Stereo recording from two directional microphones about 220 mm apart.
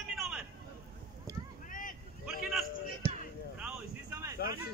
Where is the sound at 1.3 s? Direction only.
15° right (ahead or behind).